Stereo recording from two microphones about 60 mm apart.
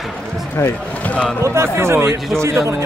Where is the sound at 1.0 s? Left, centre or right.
Left.